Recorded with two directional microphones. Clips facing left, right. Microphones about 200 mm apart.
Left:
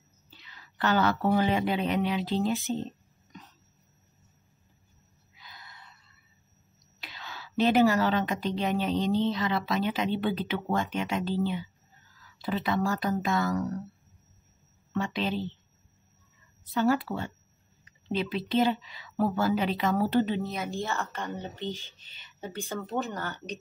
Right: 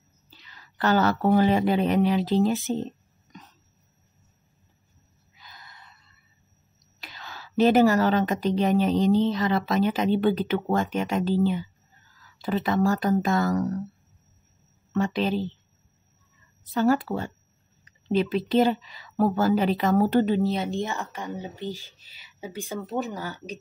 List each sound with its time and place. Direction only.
0.4 s speech: 40° right (ahead or behind)
7.0 s a woman's voice: 45° right (ahead or behind)
15.0 s a woman's voice: 45° right (ahead or behind)
16.7 s a woman's voice: 40° right (ahead or behind)
20.5 s speech: 20° right (ahead or behind)
21.3 s a woman's voice: 5° right (ahead or behind)